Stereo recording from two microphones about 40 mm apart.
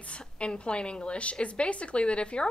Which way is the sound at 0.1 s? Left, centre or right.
Left.